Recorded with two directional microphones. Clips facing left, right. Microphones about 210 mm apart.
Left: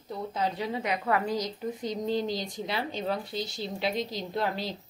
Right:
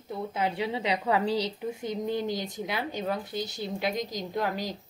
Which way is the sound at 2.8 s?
15° right (ahead or behind).